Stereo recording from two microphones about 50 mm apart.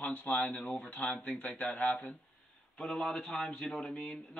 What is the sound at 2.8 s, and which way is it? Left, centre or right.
Speech, centre.